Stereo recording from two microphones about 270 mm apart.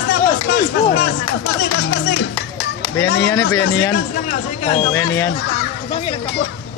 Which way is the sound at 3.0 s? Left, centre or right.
Left.